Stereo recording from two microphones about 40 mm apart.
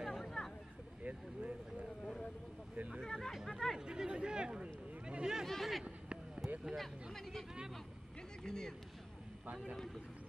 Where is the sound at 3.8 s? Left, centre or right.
Right.